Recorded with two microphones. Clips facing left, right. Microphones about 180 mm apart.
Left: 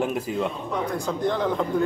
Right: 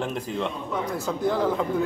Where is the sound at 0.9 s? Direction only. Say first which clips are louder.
Right 1 dB; 5° right (ahead or behind).